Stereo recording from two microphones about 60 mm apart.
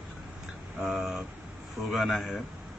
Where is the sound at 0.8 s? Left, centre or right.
Centre.